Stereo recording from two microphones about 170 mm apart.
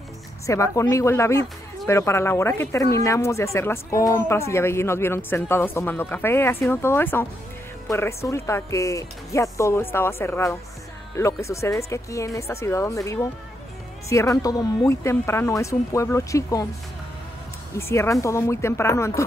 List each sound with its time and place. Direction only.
0.5 s speech: 20° left (ahead or behind)
17.7 s speech: 15° left (ahead or behind)